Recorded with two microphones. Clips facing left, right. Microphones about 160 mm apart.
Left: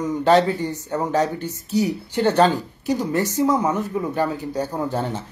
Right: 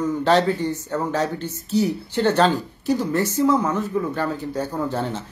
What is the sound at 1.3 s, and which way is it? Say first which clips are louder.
Speech: even; 15° left (ahead or behind).